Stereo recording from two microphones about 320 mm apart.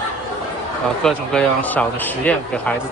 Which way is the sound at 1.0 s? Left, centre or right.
Centre.